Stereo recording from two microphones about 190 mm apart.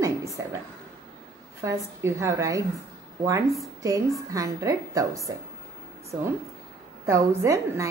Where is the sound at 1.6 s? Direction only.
15° right (ahead or behind).